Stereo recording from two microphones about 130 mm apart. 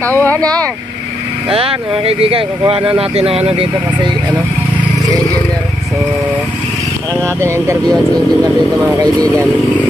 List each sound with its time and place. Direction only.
0.0 s speech: 15° left (ahead or behind)
1.5 s speech: 45° right (ahead or behind)
7.3 s speech: 20° right (ahead or behind)
8.8 s speech: 25° right (ahead or behind)